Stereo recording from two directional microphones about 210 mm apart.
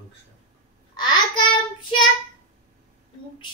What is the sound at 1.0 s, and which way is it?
Speech, 20° left (ahead or behind).